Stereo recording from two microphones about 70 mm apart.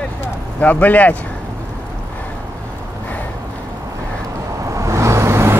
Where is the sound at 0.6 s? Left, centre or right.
Left.